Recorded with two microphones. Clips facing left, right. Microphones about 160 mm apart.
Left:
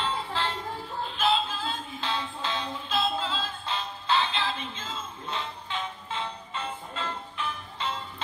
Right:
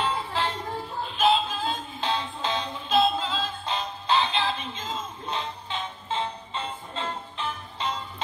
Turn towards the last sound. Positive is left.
turn(degrees=-20)  # may be behind; listen again after turning